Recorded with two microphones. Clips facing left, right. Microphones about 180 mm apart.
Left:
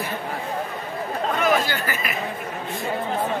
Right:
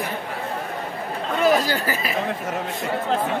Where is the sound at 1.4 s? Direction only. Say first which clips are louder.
Right 4 dB; 35° right (ahead or behind).